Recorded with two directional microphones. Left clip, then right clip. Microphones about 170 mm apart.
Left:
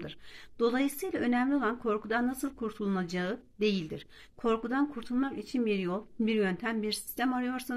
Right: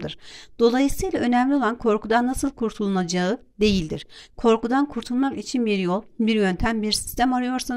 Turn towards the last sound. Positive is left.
turn(degrees=-45)  # may be behind; listen again after turning